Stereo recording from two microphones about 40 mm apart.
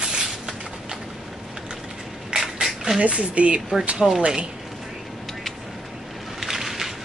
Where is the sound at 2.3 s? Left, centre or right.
Centre.